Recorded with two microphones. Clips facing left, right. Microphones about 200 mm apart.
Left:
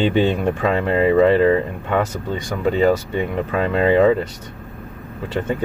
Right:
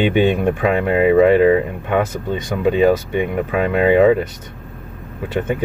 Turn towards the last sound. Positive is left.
turn(degrees=-15)  # may be behind; listen again after turning